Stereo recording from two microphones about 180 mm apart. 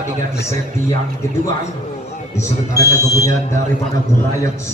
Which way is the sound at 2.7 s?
20° left (ahead or behind).